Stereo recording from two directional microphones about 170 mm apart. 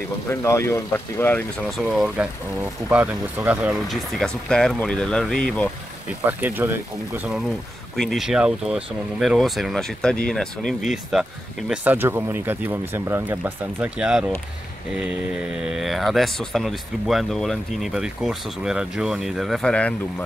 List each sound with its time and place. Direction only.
0.3 s speech: 15° left (ahead or behind)
1.8 s speech: centre (ahead or behind)
6.2 s speech: 10° right (ahead or behind)
7.9 s speech: centre (ahead or behind)